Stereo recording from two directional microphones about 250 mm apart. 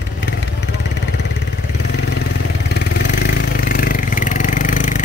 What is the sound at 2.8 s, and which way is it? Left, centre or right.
Vehicle, left.